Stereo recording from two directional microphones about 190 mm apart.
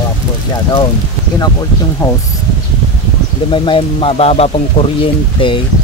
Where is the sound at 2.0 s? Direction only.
15° left (ahead or behind).